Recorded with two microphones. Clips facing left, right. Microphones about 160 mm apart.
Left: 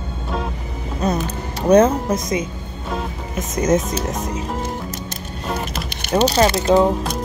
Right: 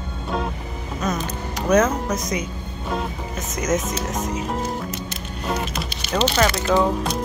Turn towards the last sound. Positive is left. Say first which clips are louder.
# left 4 dB
turn(degrees=30)  # may be behind; listen again after turning